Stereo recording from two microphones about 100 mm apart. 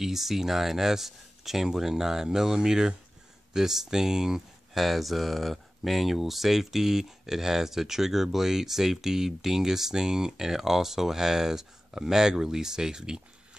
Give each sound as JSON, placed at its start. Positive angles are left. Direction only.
{"t": 0.0, "sound": "speech", "side_deg": -5}